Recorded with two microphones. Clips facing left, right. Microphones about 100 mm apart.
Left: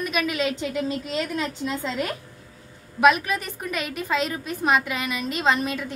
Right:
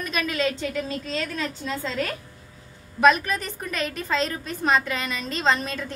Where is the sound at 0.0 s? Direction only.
10° left (ahead or behind).